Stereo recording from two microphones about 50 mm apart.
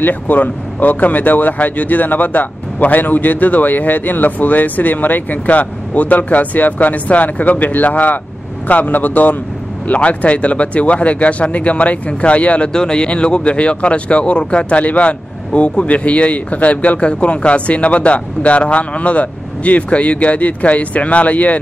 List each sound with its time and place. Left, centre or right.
0.0 s speech: left